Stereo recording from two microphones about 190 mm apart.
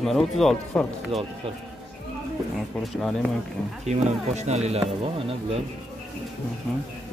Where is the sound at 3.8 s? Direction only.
35° right (ahead or behind).